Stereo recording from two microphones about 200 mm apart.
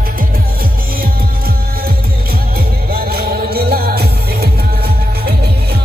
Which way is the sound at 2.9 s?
50° right (ahead or behind).